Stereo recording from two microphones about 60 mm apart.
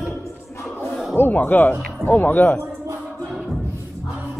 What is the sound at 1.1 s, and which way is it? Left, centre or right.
Speech, left.